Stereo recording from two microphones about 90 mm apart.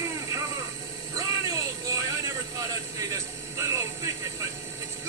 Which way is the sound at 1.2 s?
45° right (ahead or behind).